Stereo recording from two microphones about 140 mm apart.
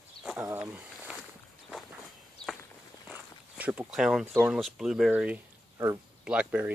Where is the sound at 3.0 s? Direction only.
10° right (ahead or behind).